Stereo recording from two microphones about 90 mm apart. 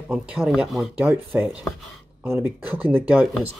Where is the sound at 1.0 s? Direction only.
20° right (ahead or behind).